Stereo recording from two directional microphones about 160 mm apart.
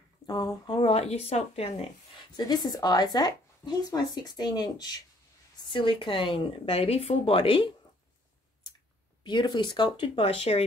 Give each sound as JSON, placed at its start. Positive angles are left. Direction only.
{"t": 0.3, "sound": "speech", "side_deg": 25}
{"t": 2.3, "sound": "speech", "side_deg": 25}
{"t": 9.2, "sound": "speech", "side_deg": 30}